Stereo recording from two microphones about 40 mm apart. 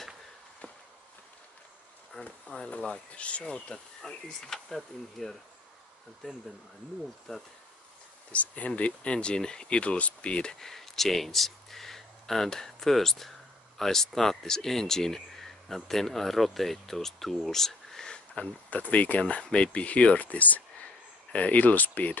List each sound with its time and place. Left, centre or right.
2.2 s speech: left
3.6 s speech: centre
7.3 s speech: centre
8.3 s speech: left
10.6 s speech: centre
18.1 s a sound: left
18.7 s speech: left